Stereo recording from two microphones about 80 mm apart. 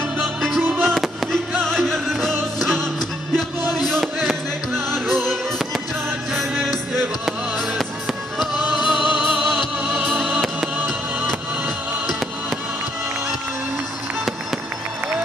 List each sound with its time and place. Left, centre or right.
0.2 s music: centre
0.7 s fireworks: centre
1.6 s music: centre
3.9 s a sound: centre
4.9 s music: centre
10.8 s music: right